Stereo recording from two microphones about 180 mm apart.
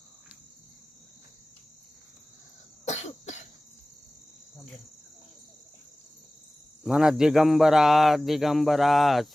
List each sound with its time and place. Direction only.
2.8 s cough: 35° left (ahead or behind)
6.8 s a man's voice: 5° right (ahead or behind)